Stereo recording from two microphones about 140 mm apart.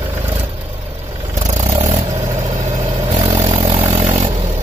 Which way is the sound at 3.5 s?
50° right (ahead or behind).